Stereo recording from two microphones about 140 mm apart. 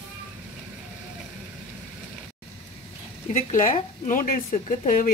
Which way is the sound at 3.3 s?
65° left (ahead or behind).